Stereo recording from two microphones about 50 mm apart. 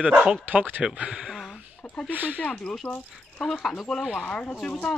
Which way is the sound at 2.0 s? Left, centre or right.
Right.